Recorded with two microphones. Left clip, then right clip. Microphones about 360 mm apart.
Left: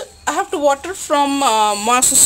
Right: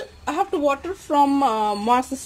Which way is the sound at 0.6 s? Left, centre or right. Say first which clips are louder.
Left 6 dB; left.